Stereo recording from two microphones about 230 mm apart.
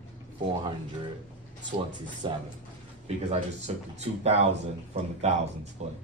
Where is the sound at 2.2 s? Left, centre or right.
Right.